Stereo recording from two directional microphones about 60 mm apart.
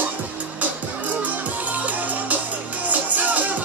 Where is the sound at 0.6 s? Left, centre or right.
Right.